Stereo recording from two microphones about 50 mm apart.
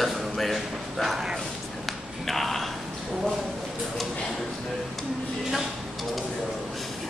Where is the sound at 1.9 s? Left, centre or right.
Centre.